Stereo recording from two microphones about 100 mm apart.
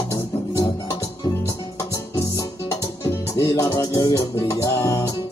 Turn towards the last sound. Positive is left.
turn(degrees=30)  # may be behind; listen again after turning